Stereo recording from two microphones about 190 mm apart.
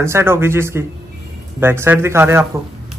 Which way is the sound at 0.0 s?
15° right (ahead or behind).